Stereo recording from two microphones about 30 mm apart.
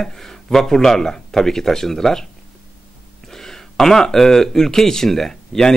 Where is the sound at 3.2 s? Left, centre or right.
Centre.